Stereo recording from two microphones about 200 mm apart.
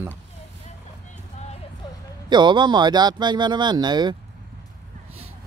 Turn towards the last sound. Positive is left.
turn(degrees=-20)  # may be behind; listen again after turning